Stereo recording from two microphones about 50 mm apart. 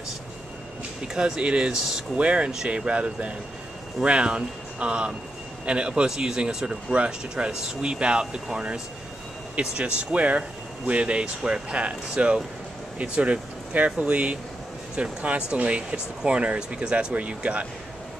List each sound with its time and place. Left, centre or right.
1.0 s speech: centre
2.1 s speech: right